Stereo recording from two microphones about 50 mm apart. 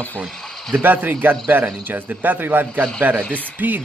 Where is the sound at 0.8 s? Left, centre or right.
Right.